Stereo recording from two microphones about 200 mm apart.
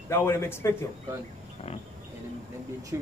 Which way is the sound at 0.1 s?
10° left (ahead or behind).